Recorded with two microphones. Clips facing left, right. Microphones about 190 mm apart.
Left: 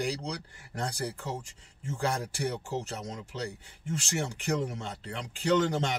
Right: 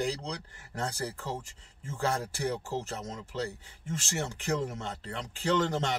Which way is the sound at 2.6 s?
15° left (ahead or behind).